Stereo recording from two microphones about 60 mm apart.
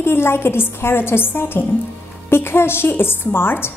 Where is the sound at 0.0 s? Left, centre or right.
Left.